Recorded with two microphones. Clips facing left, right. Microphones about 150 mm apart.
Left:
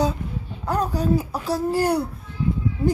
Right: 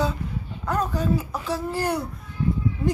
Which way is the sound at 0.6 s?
35° left (ahead or behind).